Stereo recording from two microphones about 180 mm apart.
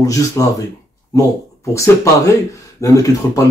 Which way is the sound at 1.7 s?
15° left (ahead or behind).